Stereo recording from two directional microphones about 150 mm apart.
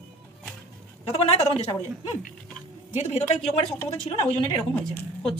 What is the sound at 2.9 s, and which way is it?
Speech, 45° left (ahead or behind).